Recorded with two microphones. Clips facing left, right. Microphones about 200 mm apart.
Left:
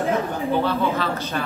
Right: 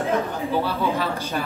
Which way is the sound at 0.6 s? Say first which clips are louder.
Left 2 dB; 10° right (ahead or behind).